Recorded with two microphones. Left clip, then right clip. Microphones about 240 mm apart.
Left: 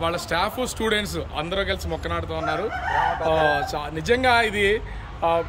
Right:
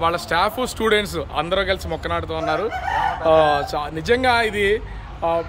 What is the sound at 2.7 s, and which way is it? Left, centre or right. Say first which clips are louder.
Chicken: right 1 dB; right.